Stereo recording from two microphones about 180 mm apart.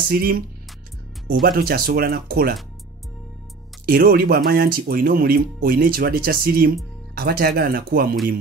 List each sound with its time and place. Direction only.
0.1 s speech: 55° right (ahead or behind)
1.4 s speech: 55° right (ahead or behind)
3.8 s speech: 60° right (ahead or behind)